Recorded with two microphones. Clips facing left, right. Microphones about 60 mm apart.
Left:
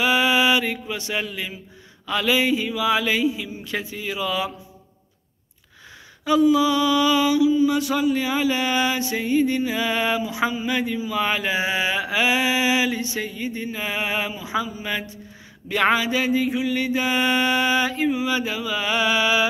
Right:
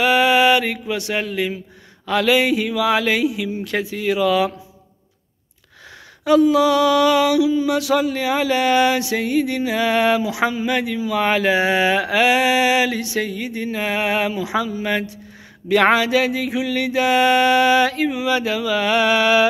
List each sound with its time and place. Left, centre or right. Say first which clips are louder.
0.0 s mantra: right 4 dB; right
6.2 s mantra: right 3 dB; right
15.7 s mantra: right 5 dB; right